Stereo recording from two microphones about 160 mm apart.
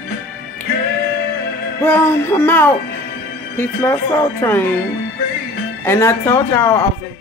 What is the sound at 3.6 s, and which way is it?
Speech, 15° left (ahead or behind).